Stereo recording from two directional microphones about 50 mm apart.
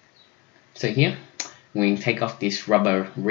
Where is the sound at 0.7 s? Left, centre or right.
Right.